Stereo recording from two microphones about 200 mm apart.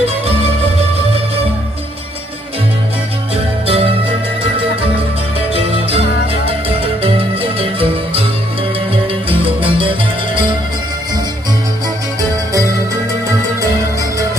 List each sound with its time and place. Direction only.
3.6 s music: 30° right (ahead or behind)
5.5 s music: 30° right (ahead or behind)
9.3 s music: 25° right (ahead or behind)